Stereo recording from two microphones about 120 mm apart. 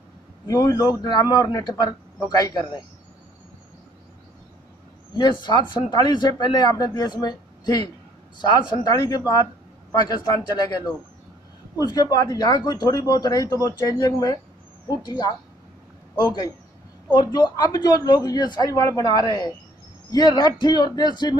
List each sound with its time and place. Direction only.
0.5 s speech: 30° left (ahead or behind)
5.1 s speech: 40° left (ahead or behind)
11.8 s speech: 35° left (ahead or behind)
17.1 s speech: 40° left (ahead or behind)